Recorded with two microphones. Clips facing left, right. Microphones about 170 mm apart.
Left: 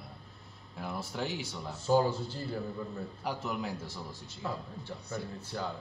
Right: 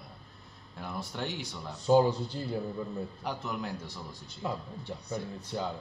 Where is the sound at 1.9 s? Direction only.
20° right (ahead or behind).